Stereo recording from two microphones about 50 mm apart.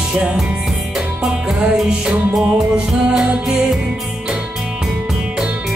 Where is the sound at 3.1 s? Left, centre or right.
Centre.